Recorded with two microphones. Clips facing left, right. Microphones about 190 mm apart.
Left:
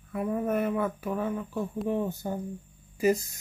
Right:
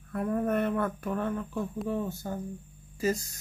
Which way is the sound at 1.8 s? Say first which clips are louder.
Left 3 dB; 15° left (ahead or behind).